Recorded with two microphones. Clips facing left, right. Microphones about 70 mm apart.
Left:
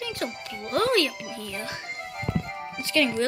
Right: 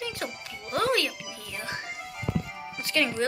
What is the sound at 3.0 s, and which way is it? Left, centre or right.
Speech, right.